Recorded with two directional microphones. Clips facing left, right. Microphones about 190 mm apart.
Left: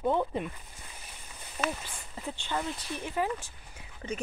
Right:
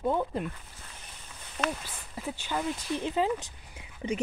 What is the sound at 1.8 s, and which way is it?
Speech, 10° right (ahead or behind).